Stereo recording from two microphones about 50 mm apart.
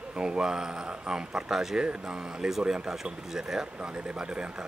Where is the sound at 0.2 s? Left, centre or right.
Centre.